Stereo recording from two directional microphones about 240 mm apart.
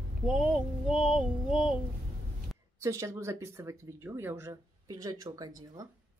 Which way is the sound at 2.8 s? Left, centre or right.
Centre.